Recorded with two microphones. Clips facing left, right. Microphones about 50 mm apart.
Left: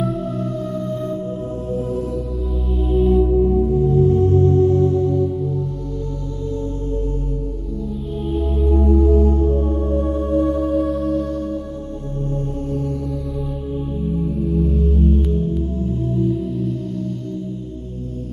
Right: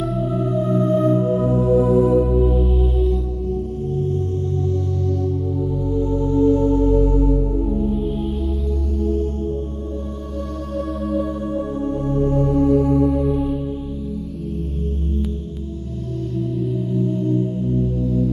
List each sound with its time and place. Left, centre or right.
0.4 s music: right
1.7 s music: right
2.8 s music: centre
3.2 s music: left
4.2 s music: left; by 5.3 s centre
6.3 s music: right
8.8 s music: left
10.7 s singing bowl: centre
12.5 s music: right